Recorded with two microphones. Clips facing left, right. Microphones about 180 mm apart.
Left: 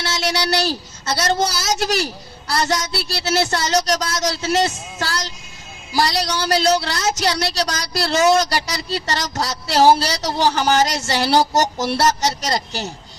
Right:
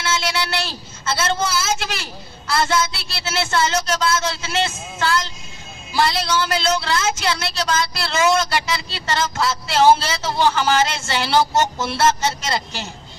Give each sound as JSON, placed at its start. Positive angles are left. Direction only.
{"t": 0.0, "sound": "a woman's voice", "side_deg": 40}